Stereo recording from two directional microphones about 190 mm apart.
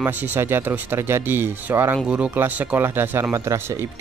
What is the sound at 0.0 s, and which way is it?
Speech, 10° right (ahead or behind).